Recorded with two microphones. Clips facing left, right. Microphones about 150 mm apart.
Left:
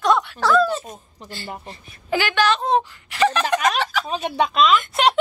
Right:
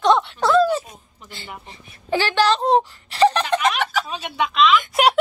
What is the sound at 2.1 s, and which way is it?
Speech, 30° right (ahead or behind).